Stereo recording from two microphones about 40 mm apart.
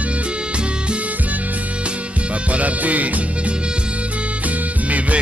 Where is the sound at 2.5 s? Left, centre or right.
Right.